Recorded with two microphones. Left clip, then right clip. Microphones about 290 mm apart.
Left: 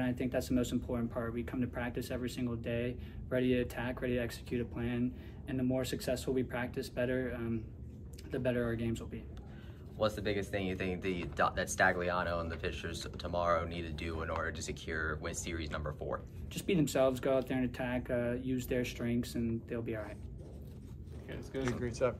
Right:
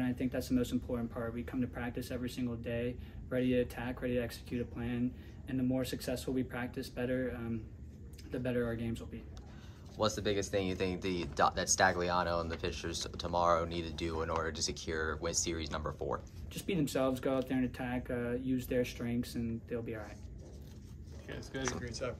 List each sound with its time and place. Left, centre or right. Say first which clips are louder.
0.0 s speech: left 2 dB; centre
9.9 s speech: right 1 dB; centre
16.5 s speech: left 3 dB; centre
21.8 s speech: left 7 dB; centre